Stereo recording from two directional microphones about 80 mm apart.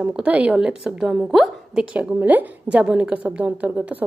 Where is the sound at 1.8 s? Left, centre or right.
Centre.